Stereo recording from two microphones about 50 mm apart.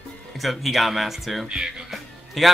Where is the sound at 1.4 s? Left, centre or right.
Centre.